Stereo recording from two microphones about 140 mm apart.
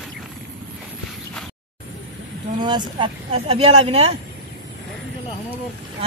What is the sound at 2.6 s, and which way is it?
Speech, 30° right (ahead or behind).